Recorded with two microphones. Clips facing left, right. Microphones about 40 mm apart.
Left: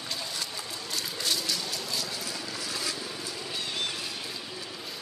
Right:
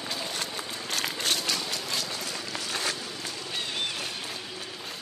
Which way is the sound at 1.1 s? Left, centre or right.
Right.